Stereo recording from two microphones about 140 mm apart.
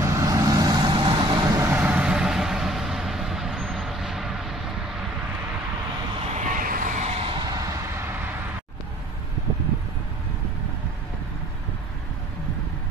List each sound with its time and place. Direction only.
0.0 s vehicle: 25° right (ahead or behind)
1.6 s vehicle: 15° right (ahead or behind)
6.3 s vehicle: 75° right (ahead or behind)
7.1 s a sound: 40° right (ahead or behind); by 8.1 s 20° right (ahead or behind)